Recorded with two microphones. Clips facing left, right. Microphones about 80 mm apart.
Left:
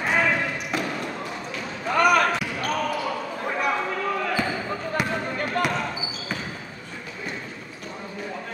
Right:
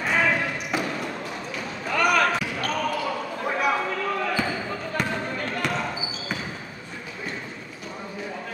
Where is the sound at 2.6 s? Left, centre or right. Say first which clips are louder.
Left 1 dB; centre.